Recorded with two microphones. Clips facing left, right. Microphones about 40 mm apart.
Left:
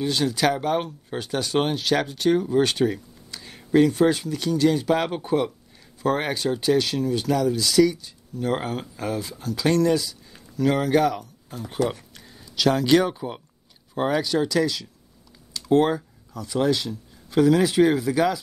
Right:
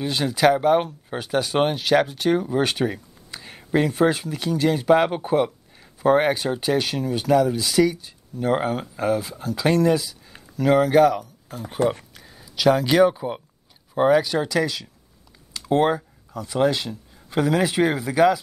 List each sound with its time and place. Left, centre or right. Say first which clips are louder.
0.0 s speech: right 3 dB; centre
8.5 s speech: right 4 dB; centre
11.8 s speech: right 3 dB; right
12.1 s speech: even; centre